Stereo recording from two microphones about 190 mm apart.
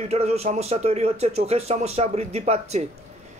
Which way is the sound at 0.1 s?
35° right (ahead or behind).